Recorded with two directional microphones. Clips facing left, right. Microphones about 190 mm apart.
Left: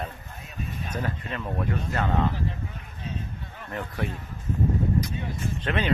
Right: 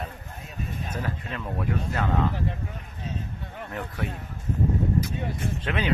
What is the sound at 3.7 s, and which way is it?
Speech, 5° right (ahead or behind).